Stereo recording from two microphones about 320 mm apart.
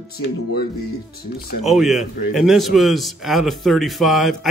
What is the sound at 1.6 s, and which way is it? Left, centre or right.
A man's voice, centre.